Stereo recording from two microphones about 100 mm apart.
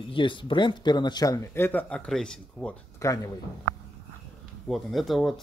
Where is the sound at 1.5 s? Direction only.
20° left (ahead or behind).